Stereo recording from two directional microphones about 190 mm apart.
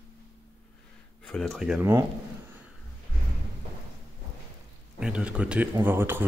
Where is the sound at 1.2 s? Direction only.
5° left (ahead or behind).